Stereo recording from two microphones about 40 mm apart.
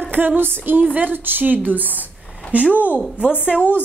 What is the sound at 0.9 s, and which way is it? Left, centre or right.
A woman's voice, right.